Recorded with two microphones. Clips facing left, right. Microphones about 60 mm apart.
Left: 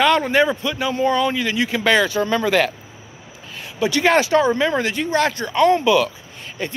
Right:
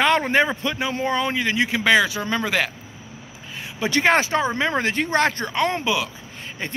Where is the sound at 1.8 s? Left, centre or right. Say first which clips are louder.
Left 2 dB; centre.